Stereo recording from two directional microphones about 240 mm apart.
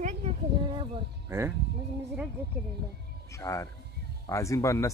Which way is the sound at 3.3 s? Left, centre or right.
Centre.